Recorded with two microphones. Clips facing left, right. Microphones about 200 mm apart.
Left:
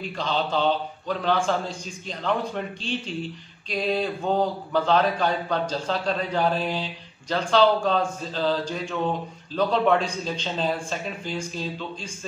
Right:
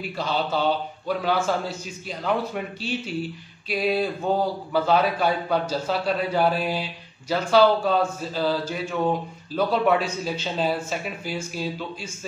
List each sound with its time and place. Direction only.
0.0 s a man's voice: 10° right (ahead or behind)